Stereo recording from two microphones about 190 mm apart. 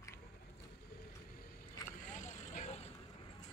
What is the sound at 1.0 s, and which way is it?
Boat, 50° left (ahead or behind).